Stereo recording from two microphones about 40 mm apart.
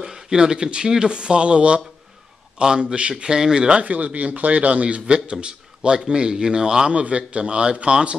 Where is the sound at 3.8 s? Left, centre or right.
Right.